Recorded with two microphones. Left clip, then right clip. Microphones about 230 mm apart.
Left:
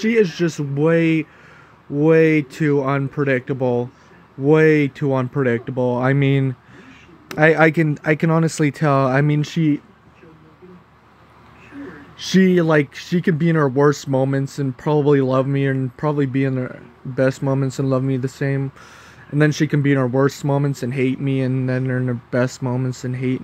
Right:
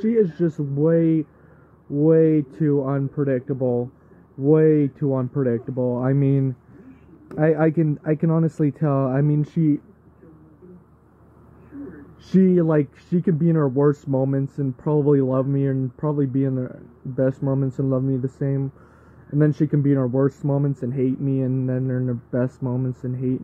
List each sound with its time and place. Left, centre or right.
0.0 s speech: left
2.7 s speech: left
5.0 s speech: left
12.3 s speech: centre
13.6 s speech: left
13.8 s speech: left
17.4 s speech: left
17.9 s speech: left
20.1 s speech: left